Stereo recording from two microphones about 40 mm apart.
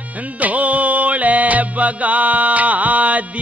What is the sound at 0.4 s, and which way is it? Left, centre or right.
Music, right.